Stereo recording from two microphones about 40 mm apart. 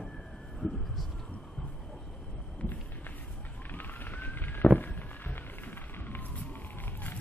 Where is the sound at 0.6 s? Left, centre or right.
Centre.